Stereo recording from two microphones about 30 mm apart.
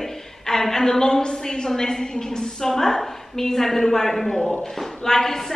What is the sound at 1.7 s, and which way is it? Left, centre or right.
A woman's voice, centre.